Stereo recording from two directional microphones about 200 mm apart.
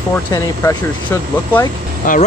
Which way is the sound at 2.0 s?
40° left (ahead or behind).